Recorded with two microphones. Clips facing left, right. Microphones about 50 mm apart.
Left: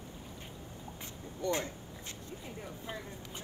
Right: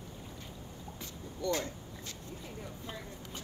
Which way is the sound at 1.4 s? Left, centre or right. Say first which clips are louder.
Even; left.